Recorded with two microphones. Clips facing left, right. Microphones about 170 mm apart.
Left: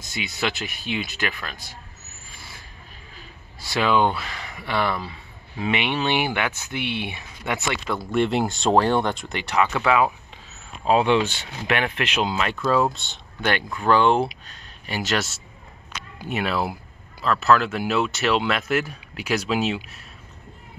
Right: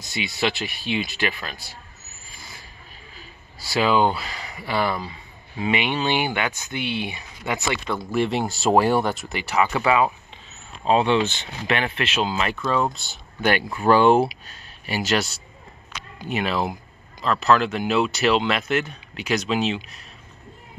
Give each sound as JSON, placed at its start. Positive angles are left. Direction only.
{"t": 0.0, "sound": "speech", "side_deg": 50}
{"t": 3.6, "sound": "speech", "side_deg": -5}
{"t": 10.9, "sound": "speech", "side_deg": 10}
{"t": 12.4, "sound": "speech", "side_deg": 0}